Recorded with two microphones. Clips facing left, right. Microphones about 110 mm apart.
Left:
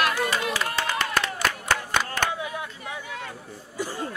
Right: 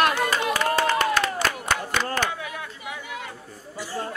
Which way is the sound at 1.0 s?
45° right (ahead or behind).